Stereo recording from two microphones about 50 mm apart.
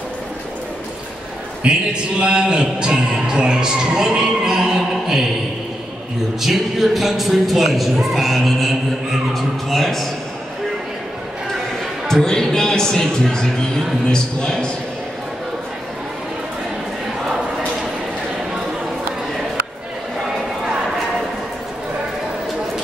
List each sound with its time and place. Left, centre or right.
1.6 s a man's voice: centre
6.4 s speech: centre
12.1 s speech: centre